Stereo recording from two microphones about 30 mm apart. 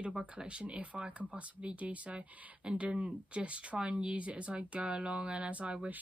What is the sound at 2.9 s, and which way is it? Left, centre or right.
Speech, right.